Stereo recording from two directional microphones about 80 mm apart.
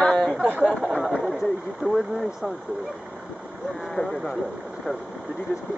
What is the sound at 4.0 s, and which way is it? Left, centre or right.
Speech, left.